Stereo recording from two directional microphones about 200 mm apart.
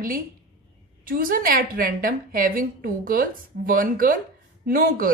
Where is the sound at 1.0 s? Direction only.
45° right (ahead or behind).